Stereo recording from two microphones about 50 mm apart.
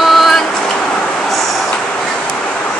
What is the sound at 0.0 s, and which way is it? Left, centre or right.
Vehicle, centre.